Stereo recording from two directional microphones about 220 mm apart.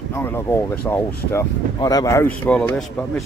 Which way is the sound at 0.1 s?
10° left (ahead or behind).